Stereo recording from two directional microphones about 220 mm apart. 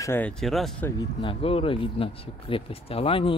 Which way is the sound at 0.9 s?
25° left (ahead or behind).